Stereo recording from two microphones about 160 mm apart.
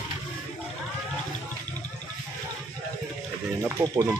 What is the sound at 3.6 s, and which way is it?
Speech, 25° right (ahead or behind).